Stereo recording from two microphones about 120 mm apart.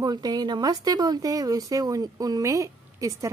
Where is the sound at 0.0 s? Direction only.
35° right (ahead or behind).